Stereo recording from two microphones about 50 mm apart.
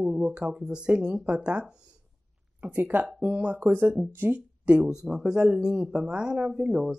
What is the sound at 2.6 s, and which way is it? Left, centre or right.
Speech, right.